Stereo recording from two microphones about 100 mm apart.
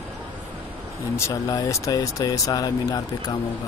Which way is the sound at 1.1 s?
30° left (ahead or behind).